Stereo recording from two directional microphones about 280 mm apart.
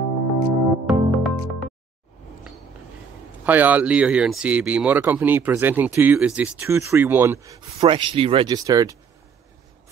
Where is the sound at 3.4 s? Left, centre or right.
Centre.